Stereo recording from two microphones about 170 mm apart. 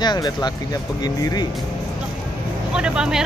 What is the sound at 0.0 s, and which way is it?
A man's voice, 25° left (ahead or behind).